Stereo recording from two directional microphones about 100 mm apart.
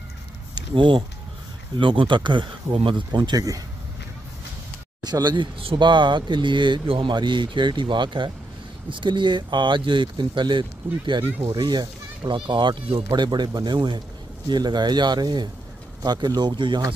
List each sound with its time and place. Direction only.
0.6 s speech: 55° right (ahead or behind); by 3.6 s 35° right (ahead or behind)
5.0 s speech: 45° right (ahead or behind)
5.6 s speech: 60° right (ahead or behind)